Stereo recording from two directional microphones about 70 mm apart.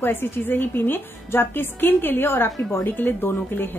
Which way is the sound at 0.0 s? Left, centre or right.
Left.